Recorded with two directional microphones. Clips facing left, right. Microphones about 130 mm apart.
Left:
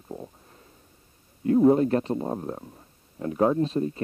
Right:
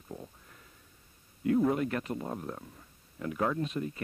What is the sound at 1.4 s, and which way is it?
Speech, 30° left (ahead or behind).